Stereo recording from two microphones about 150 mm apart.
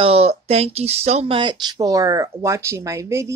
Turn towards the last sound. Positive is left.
turn(degrees=-20)  # may be behind; listen again after turning